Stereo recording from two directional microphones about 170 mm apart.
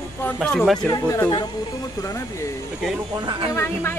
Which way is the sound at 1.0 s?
10° left (ahead or behind).